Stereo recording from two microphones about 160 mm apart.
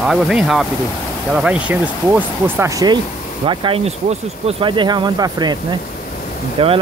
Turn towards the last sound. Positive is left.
turn(degrees=-35)  # may be behind; listen again after turning